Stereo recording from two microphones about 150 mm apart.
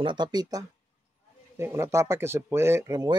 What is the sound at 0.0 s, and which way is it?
Speech, 30° right (ahead or behind).